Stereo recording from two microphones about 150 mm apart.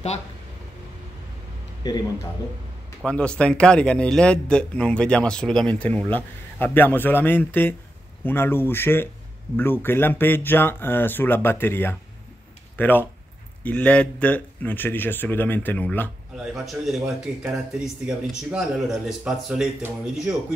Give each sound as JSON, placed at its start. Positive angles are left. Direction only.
{"t": 1.8, "sound": "a man's voice", "side_deg": 25}
{"t": 3.1, "sound": "speech", "side_deg": 5}
{"t": 16.3, "sound": "speech", "side_deg": 0}